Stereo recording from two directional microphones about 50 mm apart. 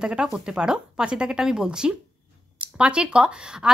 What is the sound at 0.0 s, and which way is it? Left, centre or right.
A woman's voice, centre.